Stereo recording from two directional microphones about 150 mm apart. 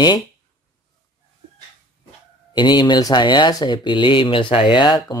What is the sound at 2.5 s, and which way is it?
Speech, 30° left (ahead or behind).